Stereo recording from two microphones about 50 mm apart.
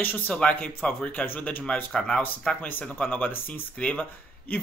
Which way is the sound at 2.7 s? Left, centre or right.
Left.